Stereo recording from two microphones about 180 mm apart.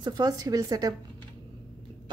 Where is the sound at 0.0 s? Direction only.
20° right (ahead or behind).